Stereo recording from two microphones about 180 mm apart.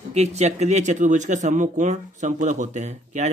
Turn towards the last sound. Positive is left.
turn(degrees=-40)  # may be behind; listen again after turning